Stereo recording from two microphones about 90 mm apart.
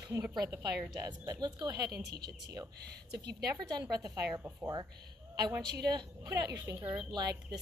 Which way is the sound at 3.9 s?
40° right (ahead or behind).